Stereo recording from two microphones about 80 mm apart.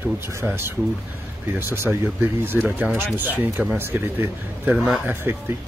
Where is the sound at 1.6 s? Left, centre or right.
Right.